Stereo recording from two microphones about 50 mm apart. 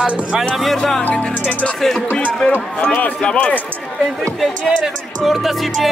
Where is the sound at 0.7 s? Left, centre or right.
Centre.